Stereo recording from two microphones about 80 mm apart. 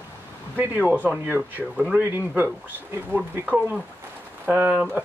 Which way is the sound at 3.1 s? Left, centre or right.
Centre.